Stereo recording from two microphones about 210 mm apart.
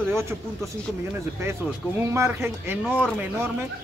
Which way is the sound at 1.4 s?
10° right (ahead or behind).